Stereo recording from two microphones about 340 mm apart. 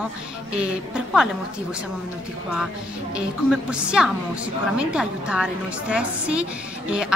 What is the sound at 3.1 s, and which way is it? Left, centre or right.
A woman's voice, centre.